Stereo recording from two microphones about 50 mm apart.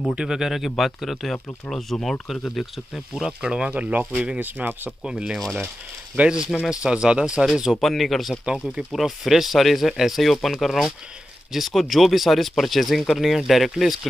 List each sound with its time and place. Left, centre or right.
0.3 s speech: centre
3.2 s speech: centre
3.7 s speech: right
4.4 s speech: right
5.0 s speech: centre
7.8 s speech: centre
8.5 s speech: centre
8.9 s speech: centre